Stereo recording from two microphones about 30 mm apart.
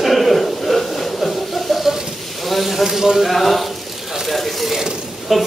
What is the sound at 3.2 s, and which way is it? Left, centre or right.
Speech, centre.